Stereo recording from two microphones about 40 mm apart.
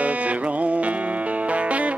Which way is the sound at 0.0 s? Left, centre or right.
Right.